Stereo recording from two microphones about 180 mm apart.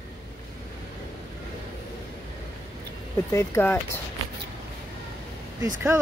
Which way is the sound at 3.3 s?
15° left (ahead or behind).